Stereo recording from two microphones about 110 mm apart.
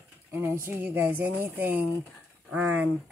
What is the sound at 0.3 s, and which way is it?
Speech, 20° right (ahead or behind).